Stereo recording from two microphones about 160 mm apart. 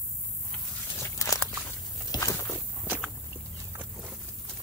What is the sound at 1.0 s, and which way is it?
Walk, 20° left (ahead or behind).